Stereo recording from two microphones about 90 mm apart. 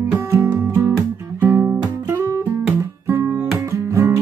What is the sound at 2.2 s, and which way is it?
Guitar, 35° right (ahead or behind).